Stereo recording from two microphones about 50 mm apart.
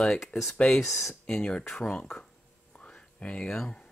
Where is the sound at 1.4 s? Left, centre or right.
Centre.